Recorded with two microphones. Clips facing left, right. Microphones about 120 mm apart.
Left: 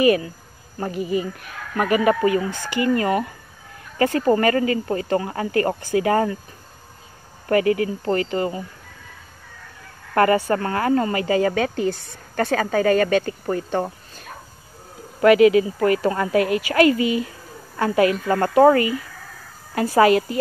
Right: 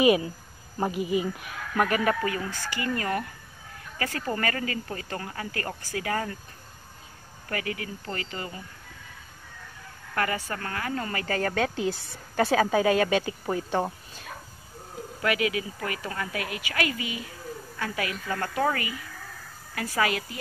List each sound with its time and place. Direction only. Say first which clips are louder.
0.0 s speech: left 4 dB; 15° right (ahead or behind)
1.8 s speech: left 6 dB; 10° left (ahead or behind)
2.1 s speech: left 10 dB; 20° left (ahead or behind)
4.4 s speech: left 11 dB; 25° left (ahead or behind)
7.4 s speech: left 14 dB; 35° left (ahead or behind)
10.6 s speech: left 11 dB; 40° left (ahead or behind)
11.1 s speech: left 9 dB; 20° left (ahead or behind)
11.3 s a woman's voice: left 5 dB; 5° left (ahead or behind)
15.2 s speech: left 14 dB; 35° left (ahead or behind)
19.7 s speech: left 12 dB; 30° left (ahead or behind)